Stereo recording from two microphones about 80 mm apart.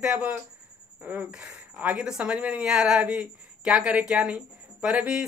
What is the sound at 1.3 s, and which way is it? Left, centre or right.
Speech, centre.